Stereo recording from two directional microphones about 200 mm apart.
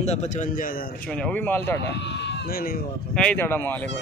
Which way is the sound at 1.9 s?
60° left (ahead or behind).